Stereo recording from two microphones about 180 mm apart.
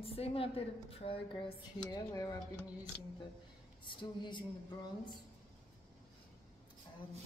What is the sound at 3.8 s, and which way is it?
Speech, 25° left (ahead or behind).